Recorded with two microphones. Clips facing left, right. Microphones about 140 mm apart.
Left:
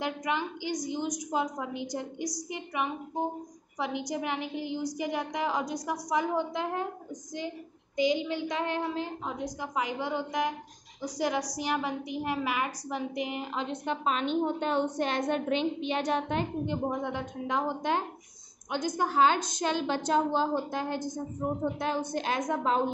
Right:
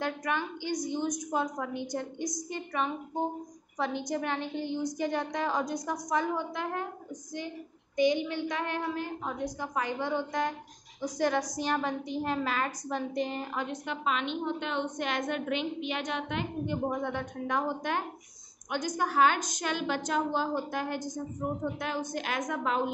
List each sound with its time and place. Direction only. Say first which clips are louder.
0.0 s a woman's voice: left 1 dB; 15° left (ahead or behind)
7.9 s a woman's voice: right 1 dB; 15° left (ahead or behind)
13.7 s a woman's voice: left 2 dB; 35° left (ahead or behind)
16.8 s a woman's voice: even; 15° left (ahead or behind)
22.1 s a woman's voice: left 3 dB; 30° left (ahead or behind)